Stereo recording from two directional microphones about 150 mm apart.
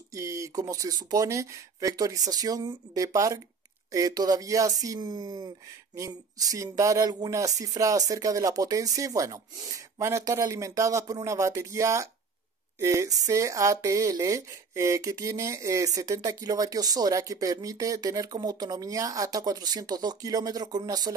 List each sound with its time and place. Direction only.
0.1 s speech: 20° right (ahead or behind)
12.7 s a sound: 20° right (ahead or behind)
13.2 s speech: 20° right (ahead or behind)